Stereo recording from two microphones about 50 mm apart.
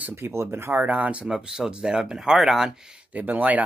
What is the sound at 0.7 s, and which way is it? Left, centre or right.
Speech, right.